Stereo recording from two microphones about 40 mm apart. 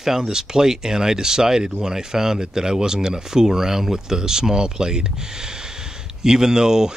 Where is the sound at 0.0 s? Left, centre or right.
Centre.